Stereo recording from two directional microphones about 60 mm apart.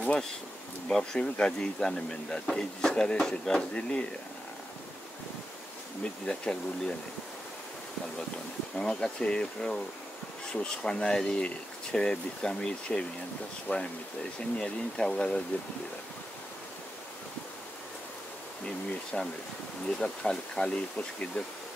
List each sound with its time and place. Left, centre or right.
0.8 s speech: centre
6.2 s speech: centre
8.7 s speech: centre
13.7 s speech: left
14.6 s speech: centre
19.1 s speech: centre